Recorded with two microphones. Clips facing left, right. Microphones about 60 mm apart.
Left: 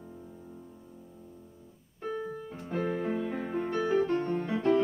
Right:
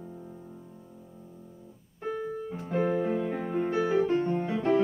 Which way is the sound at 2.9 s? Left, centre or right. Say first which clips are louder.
Right 2 dB; centre.